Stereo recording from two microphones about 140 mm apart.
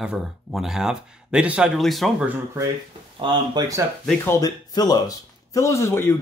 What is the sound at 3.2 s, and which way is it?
Speech, 30° right (ahead or behind).